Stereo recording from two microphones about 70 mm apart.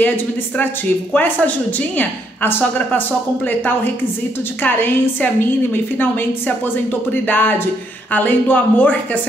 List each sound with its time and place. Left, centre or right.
1.1 s a woman's voice: left